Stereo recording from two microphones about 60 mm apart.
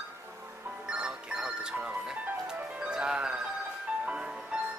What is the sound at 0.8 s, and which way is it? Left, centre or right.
Music, centre.